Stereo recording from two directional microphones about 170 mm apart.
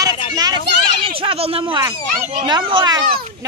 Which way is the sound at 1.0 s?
35° right (ahead or behind).